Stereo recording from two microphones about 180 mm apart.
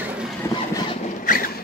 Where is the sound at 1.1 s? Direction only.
50° left (ahead or behind).